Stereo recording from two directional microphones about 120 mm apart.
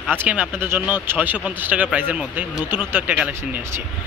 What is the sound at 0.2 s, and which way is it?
Speech, 10° right (ahead or behind).